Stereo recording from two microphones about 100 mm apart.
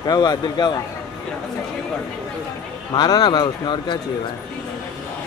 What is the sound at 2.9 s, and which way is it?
Speech, 45° left (ahead or behind).